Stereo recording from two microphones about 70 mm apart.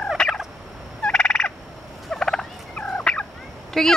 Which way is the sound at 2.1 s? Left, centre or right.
Centre.